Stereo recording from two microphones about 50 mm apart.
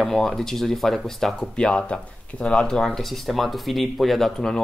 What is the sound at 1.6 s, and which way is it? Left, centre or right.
Speech, left.